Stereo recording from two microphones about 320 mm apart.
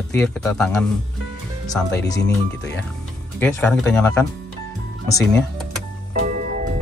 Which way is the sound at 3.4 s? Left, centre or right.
Centre.